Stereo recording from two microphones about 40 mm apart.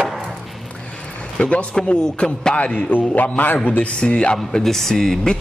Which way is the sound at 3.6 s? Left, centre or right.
Left.